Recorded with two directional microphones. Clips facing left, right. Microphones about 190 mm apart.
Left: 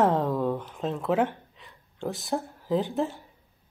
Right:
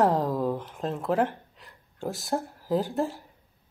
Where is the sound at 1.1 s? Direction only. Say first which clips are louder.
Even; centre (ahead or behind).